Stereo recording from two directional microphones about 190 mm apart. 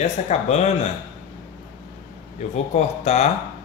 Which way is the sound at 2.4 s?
35° left (ahead or behind).